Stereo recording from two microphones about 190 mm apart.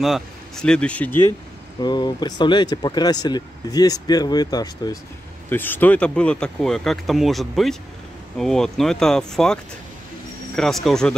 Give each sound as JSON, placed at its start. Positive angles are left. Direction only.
{"t": 0.0, "sound": "speech", "side_deg": 0}
{"t": 1.8, "sound": "speech", "side_deg": 25}
{"t": 5.5, "sound": "speech", "side_deg": 10}